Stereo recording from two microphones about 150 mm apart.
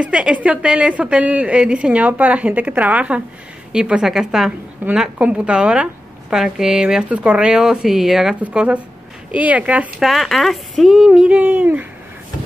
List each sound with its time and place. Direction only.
0.0 s a woman's voice: 10° right (ahead or behind)